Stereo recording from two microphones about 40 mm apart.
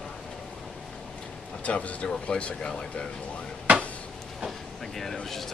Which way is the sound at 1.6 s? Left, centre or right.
Left.